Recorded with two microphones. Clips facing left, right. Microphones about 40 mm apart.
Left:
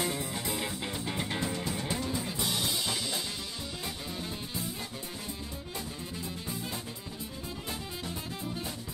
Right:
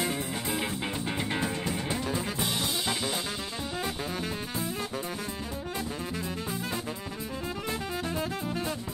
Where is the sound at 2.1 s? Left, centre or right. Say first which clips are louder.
Right 3 dB; right.